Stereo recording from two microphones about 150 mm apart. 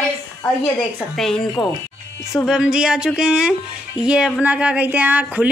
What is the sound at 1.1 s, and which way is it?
Speech, 5° left (ahead or behind).